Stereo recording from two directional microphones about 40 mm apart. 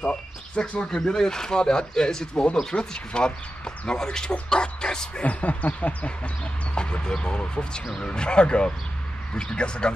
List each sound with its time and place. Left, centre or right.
0.0 s speech: left
4.3 s bow-wow: left
5.2 s speech: left